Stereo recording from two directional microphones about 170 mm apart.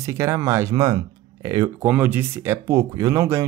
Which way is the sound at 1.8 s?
10° right (ahead or behind).